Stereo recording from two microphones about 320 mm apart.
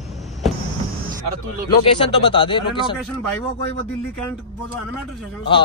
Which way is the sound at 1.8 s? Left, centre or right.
Centre.